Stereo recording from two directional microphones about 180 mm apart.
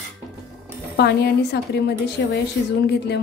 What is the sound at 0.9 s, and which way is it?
A woman's voice, 65° left (ahead or behind).